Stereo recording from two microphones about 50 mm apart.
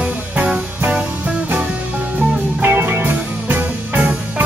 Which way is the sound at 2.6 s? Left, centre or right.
Right.